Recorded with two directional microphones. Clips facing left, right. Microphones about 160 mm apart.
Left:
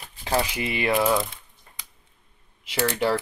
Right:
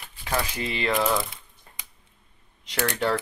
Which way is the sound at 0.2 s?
30° left (ahead or behind).